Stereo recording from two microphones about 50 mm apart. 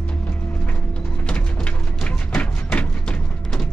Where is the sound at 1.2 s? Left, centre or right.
Left.